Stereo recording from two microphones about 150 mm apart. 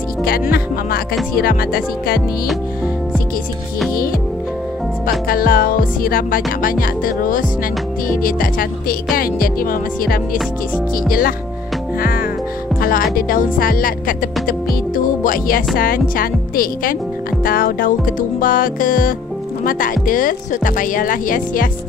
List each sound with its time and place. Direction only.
0.2 s speech: 75° left (ahead or behind)
5.3 s speech: 75° left (ahead or behind)
12.0 s music: 75° left (ahead or behind)
12.8 s speech: 75° left (ahead or behind)